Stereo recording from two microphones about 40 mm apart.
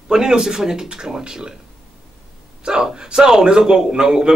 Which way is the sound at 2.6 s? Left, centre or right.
Right.